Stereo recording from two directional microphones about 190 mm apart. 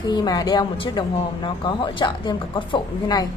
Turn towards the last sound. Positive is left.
turn(degrees=25)  # may be behind; listen again after turning